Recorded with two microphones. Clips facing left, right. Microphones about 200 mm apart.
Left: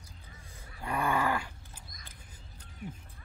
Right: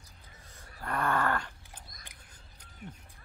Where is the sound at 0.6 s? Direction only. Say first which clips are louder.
Left 1 dB; 10° left (ahead or behind).